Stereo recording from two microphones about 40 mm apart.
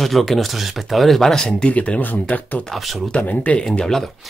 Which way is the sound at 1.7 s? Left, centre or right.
Left.